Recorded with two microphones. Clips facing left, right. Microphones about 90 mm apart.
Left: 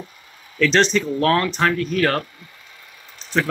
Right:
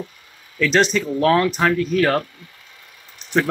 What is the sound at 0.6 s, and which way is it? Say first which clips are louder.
Speech: even; 5° right (ahead or behind).